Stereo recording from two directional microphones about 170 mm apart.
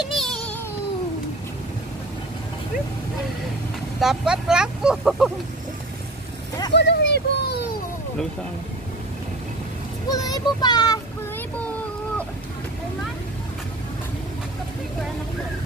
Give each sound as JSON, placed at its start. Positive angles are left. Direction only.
{"t": 0.1, "sound": "cat", "side_deg": 0}
{"t": 4.0, "sound": "speech", "side_deg": 0}
{"t": 6.7, "sound": "a sound", "side_deg": 85}
{"t": 10.1, "sound": "a child's voice", "side_deg": 20}